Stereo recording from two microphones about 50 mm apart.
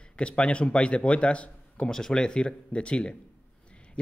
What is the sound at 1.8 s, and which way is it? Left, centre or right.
Speech, centre.